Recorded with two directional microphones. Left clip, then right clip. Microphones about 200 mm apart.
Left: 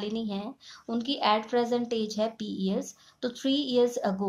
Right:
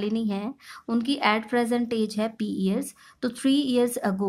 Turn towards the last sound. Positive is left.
turn(degrees=-25)  # may be behind; listen again after turning